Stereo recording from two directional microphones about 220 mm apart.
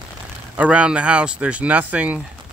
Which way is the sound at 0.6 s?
5° right (ahead or behind).